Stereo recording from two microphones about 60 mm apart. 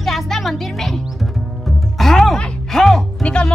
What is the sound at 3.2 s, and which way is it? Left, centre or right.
Music, centre.